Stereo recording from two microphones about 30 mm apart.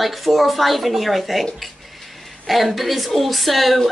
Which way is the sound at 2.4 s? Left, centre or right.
Centre.